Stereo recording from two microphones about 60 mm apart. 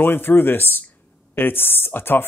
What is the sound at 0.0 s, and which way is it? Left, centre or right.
Speech, left.